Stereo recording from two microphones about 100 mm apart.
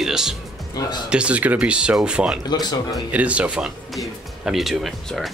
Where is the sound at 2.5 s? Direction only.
45° left (ahead or behind).